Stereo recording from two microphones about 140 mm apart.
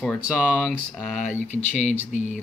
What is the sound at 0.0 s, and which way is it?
Speech, 5° left (ahead or behind).